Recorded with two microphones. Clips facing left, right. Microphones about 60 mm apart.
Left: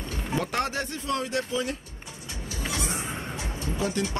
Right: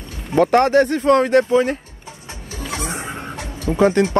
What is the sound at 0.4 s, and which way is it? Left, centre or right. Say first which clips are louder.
Speech: right 16 dB; right.